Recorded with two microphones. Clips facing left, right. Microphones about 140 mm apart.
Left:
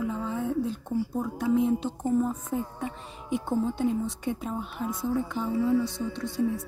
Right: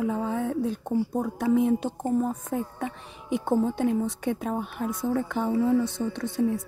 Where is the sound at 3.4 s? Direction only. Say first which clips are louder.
Right 3 dB; 55° right (ahead or behind).